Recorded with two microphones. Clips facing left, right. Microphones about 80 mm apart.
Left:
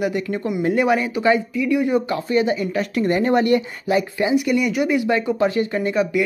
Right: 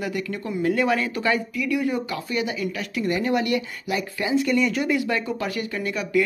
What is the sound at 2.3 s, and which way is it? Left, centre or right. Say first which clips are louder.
Speech: left 7 dB; left.